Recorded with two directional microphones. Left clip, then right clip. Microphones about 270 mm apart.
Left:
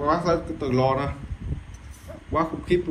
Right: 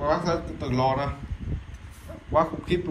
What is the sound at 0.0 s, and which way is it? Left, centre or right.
Speech, centre.